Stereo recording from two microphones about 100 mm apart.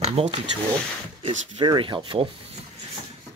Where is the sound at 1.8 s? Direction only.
55° right (ahead or behind).